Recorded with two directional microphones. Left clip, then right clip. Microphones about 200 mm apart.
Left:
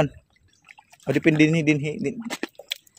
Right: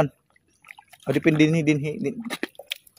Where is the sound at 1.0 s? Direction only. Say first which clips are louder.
Left 1 dB; 5° left (ahead or behind).